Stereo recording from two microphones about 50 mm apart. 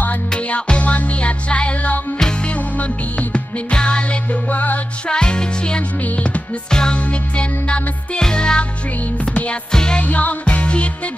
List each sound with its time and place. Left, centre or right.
0.3 s music: left
2.1 s music: centre
2.5 s music: left
5.0 s music: centre
6.7 s music: centre
9.3 s music: left
9.7 s music: centre
10.0 s music: left